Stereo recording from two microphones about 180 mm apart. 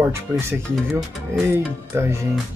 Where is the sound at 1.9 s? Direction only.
15° right (ahead or behind).